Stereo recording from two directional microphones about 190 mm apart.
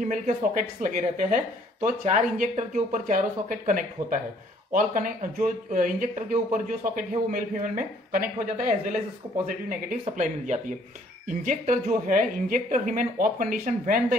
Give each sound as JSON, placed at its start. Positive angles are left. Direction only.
{"t": 0.0, "sound": "speech", "side_deg": -45}